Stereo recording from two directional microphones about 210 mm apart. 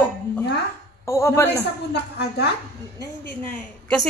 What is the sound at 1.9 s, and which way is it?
Speech, 50° left (ahead or behind).